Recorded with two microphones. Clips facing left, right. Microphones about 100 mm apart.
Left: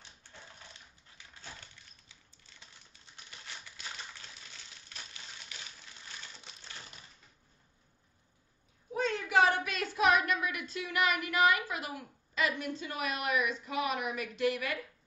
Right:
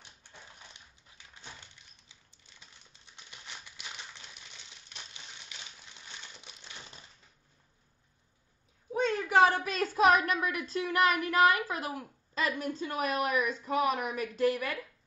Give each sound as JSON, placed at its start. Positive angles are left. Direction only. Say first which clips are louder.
{"t": 3.3, "sound": "typewriter", "louder": "even", "side_deg": -20}
{"t": 8.9, "sound": "speech", "louder": "right 3 dB", "side_deg": -35}